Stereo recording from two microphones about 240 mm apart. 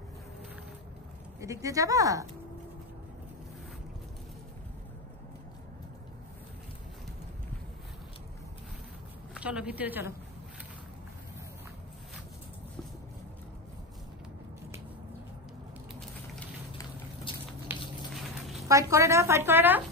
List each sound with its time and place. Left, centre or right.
1.4 s speech: centre
9.3 s a woman's voice: centre
16.7 s boat: left
17.7 s a sound: centre
18.7 s speech: centre